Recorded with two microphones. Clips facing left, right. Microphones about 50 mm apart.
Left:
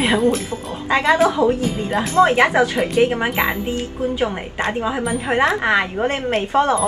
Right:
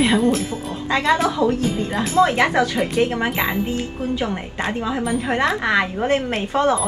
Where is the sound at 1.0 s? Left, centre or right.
Centre.